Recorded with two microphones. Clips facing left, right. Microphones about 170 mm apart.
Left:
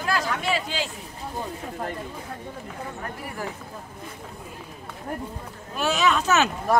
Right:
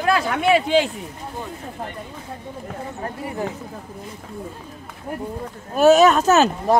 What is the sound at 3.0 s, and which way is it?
Speech, 25° right (ahead or behind).